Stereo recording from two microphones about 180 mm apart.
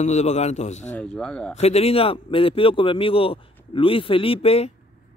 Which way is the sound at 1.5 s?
35° left (ahead or behind).